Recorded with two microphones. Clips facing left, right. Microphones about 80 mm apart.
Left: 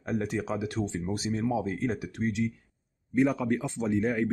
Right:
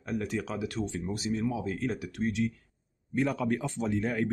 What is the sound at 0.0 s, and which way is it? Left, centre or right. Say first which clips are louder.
Speech: left 2 dB; left.